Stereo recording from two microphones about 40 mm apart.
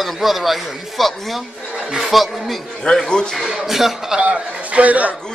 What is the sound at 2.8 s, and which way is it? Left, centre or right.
Speech, centre.